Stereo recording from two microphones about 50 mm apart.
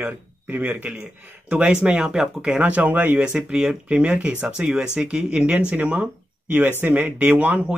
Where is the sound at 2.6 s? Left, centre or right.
Right.